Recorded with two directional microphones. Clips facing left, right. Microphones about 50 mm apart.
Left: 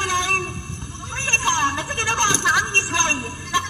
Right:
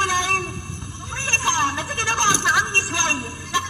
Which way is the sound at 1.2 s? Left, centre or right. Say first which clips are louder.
Left 1 dB; left.